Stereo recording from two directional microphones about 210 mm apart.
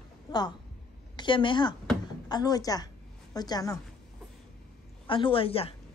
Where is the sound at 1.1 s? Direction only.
25° left (ahead or behind).